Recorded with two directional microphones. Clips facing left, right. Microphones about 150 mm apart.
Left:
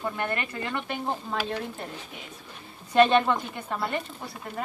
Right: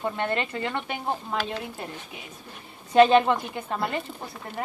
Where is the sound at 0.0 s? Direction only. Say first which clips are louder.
Right 3 dB; 25° right (ahead or behind).